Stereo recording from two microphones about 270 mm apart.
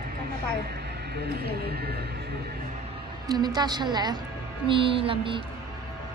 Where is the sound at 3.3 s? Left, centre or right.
Centre.